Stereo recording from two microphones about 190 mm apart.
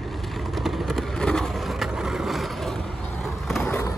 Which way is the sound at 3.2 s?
5° left (ahead or behind).